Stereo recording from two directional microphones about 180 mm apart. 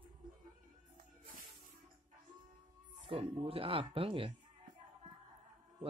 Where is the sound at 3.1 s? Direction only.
30° right (ahead or behind).